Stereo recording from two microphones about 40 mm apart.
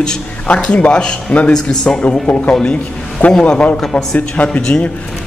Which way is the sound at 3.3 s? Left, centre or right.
Left.